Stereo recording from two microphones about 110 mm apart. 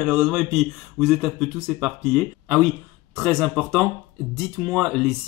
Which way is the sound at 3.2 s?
Centre (ahead or behind).